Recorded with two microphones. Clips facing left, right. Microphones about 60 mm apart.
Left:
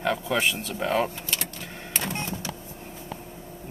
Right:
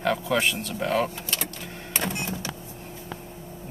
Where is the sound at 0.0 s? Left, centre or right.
Centre.